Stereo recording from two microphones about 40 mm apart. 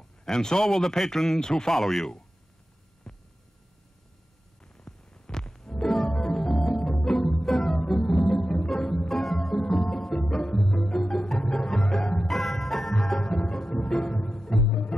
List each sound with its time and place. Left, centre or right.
0.2 s a man's voice: centre
3.1 s hum: centre
4.7 s hum: centre
5.2 s music: centre